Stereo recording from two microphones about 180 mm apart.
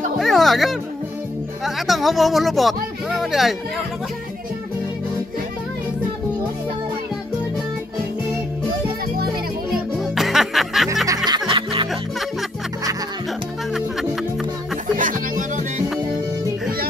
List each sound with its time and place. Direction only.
0.2 s speech: centre (ahead or behind)
9.7 s music: centre (ahead or behind)
11.2 s music: 25° right (ahead or behind)
15.0 s music: 45° right (ahead or behind)